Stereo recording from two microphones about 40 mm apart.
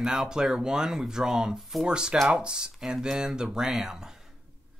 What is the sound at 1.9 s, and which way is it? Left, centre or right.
Speech, right.